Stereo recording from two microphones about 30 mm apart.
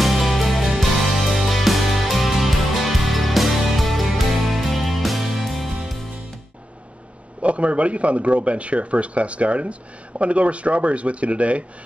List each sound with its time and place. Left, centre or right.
0.0 s music: centre
7.4 s speech: right